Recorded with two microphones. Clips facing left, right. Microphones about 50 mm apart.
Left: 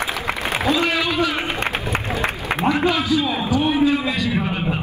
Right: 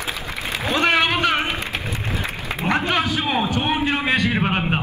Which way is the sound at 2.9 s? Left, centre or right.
Right.